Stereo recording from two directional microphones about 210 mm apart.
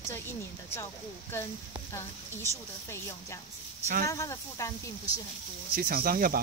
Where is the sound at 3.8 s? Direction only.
40° right (ahead or behind).